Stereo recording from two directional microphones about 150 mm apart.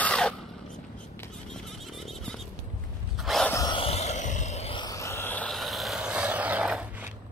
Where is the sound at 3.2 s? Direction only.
Centre (ahead or behind).